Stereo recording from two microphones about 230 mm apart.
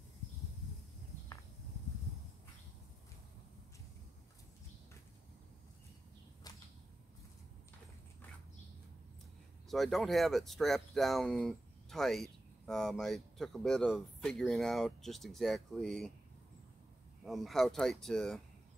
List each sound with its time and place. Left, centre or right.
6.5 s whip: centre
9.7 s speech: centre
17.2 s speech: centre